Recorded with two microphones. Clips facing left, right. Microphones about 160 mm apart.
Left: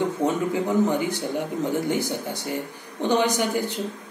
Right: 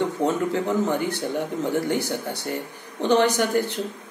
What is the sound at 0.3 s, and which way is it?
Speech, 15° left (ahead or behind).